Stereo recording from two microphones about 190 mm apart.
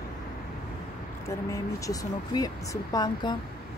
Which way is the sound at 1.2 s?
15° left (ahead or behind).